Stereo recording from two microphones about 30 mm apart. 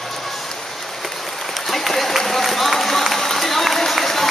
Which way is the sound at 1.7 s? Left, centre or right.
Centre.